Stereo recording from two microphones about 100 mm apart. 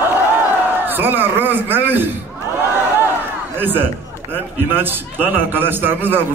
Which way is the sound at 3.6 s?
20° right (ahead or behind).